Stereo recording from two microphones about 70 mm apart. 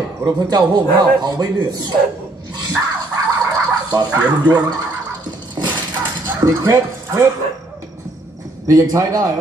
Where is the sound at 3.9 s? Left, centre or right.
Right.